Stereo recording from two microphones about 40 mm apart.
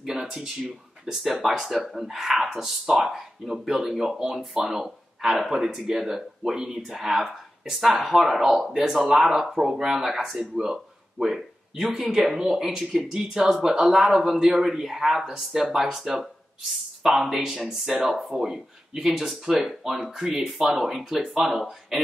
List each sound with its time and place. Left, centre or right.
0.0 s speech: centre
10.5 s a sound: centre
12.0 s speech: centre
16.2 s a sound: centre
17.2 s speech: centre
21.4 s speech: centre